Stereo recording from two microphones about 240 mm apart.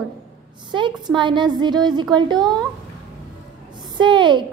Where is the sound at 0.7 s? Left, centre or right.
Centre.